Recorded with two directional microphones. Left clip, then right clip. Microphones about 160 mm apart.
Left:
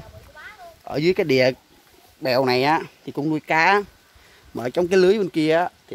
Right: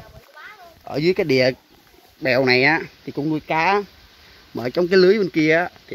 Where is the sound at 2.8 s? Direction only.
30° left (ahead or behind).